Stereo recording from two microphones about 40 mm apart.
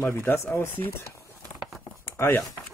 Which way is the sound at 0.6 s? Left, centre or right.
Left.